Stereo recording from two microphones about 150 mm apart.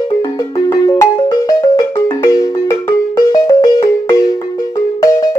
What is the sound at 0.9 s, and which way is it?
Music, 25° left (ahead or behind).